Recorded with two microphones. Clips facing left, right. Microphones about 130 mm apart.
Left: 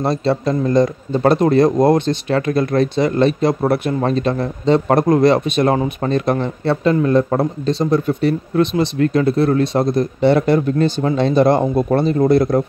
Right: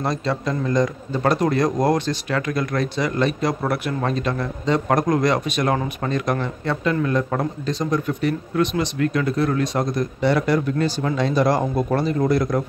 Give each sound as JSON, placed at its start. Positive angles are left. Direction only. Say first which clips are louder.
{"t": 0.0, "sound": "a man's voice", "louder": "left 6 dB", "side_deg": 30}